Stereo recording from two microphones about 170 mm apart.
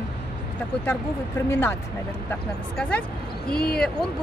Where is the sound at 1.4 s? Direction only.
15° left (ahead or behind).